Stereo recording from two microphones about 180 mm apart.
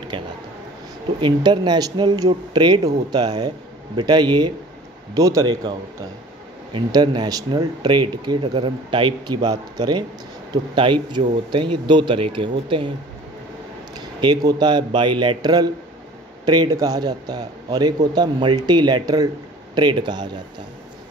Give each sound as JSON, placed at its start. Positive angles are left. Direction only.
{"t": 1.2, "sound": "speech", "side_deg": -25}
{"t": 6.7, "sound": "speech", "side_deg": -25}
{"t": 13.9, "sound": "speech", "side_deg": -20}